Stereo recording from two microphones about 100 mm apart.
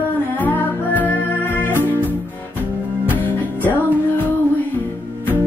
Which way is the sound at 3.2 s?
20° left (ahead or behind).